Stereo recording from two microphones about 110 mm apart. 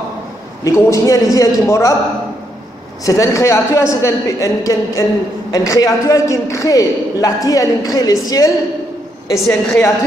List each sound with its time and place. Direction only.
0.7 s a man's voice: 25° left (ahead or behind)
3.1 s a man's voice: 30° left (ahead or behind)